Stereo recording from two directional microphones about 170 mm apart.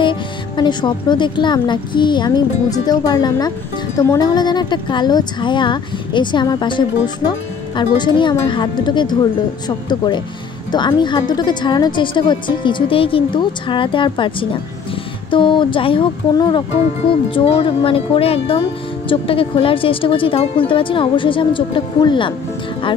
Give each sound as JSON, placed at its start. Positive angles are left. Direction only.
{"t": 0.0, "sound": "a woman's voice", "side_deg": 25}